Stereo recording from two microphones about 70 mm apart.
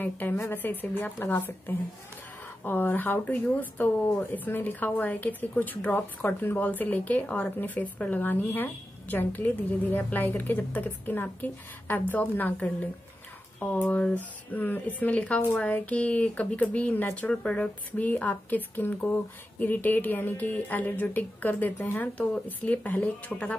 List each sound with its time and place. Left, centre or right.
0.0 s speech: left